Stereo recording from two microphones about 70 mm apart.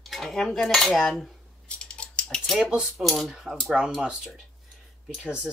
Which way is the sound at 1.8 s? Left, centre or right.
Centre.